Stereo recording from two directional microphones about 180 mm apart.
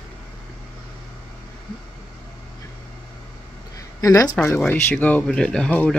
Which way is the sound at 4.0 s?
20° left (ahead or behind).